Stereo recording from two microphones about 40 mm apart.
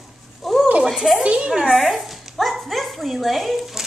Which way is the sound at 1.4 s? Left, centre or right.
Centre.